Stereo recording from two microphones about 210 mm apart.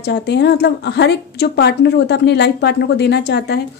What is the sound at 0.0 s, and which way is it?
A woman's voice, 55° left (ahead or behind).